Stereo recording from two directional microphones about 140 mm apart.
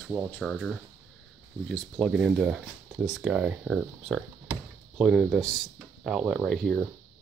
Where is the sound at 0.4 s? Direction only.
Centre (ahead or behind).